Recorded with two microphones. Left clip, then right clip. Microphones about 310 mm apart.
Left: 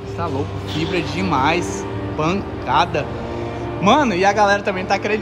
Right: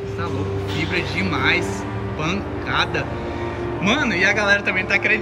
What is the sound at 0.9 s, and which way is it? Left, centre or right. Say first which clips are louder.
A man's voice: left 4 dB; centre.